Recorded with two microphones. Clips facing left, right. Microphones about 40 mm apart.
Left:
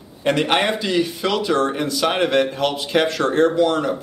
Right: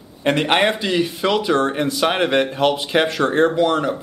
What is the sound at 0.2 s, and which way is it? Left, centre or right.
A man's voice, centre.